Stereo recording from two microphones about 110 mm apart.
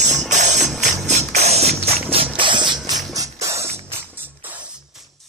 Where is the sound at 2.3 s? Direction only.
50° right (ahead or behind); by 3.7 s 25° right (ahead or behind).